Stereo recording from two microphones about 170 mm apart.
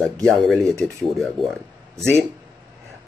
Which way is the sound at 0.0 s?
Centre (ahead or behind).